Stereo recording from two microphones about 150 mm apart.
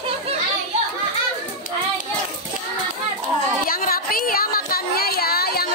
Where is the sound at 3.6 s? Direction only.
75° left (ahead or behind).